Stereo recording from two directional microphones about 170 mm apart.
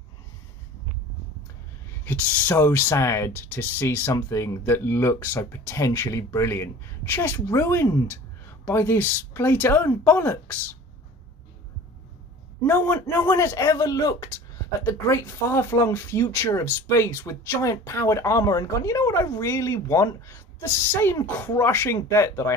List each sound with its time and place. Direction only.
1.9 s speech: 10° left (ahead or behind)
12.6 s speech: 10° left (ahead or behind)